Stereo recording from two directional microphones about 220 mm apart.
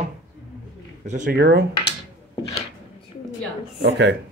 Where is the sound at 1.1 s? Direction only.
40° right (ahead or behind).